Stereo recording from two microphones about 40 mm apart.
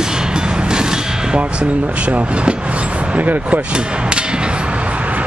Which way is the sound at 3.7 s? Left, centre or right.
Right.